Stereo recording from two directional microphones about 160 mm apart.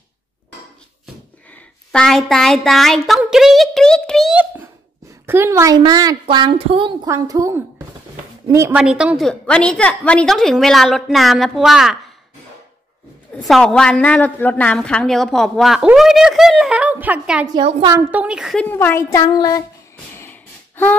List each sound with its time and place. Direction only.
1.5 s a woman's voice: 5° left (ahead or behind)
5.2 s a woman's voice: 15° right (ahead or behind); by 7.1 s 30° right (ahead or behind)
7.1 s a woman's voice: 20° right (ahead or behind)
8.7 s a woman's voice: 5° right (ahead or behind)
13.4 s a woman's voice: centre (ahead or behind)
17.6 s a woman's voice: 35° right (ahead or behind)
17.8 s a woman's voice: 15° right (ahead or behind)
18.7 s a sound: 15° left (ahead or behind)
20.2 s snort: 15° left (ahead or behind)